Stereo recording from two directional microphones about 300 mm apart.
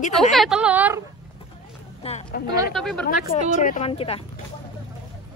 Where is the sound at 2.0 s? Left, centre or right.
Left.